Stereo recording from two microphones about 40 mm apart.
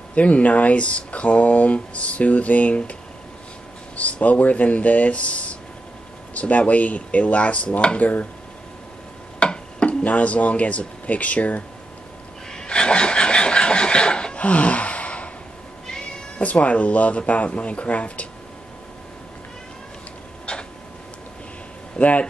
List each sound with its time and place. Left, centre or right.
0.1 s speech: left
8.0 s speech: left
9.4 s speech: left
12.4 s a sound: centre
16.3 s speech: left
21.9 s a sound: left